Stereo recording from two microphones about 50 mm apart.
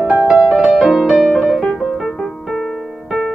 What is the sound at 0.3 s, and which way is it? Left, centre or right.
Music, right.